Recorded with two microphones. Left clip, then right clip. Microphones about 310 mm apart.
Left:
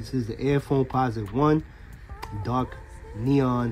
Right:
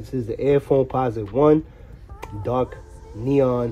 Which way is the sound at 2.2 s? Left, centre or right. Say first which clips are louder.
Right 5 dB; centre.